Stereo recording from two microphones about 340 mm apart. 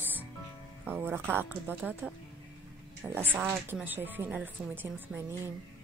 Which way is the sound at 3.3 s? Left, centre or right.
Centre.